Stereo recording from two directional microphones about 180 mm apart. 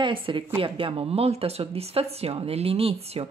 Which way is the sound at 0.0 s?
30° right (ahead or behind).